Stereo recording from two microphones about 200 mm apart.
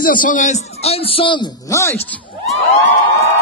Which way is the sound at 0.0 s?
45° left (ahead or behind).